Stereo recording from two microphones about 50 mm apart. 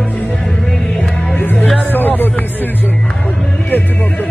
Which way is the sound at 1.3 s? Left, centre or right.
Left.